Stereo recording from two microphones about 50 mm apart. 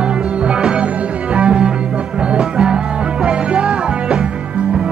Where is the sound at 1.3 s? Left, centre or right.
Centre.